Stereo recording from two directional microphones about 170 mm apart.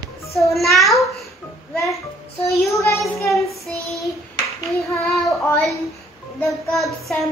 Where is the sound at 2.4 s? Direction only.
15° left (ahead or behind).